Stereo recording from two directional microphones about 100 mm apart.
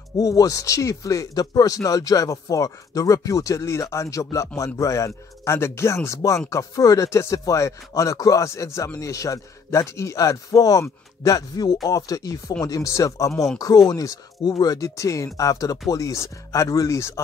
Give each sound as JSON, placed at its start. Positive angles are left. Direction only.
{"t": 0.2, "sound": "speech", "side_deg": 35}
{"t": 13.3, "sound": "speech", "side_deg": 5}
{"t": 13.8, "sound": "speech", "side_deg": 40}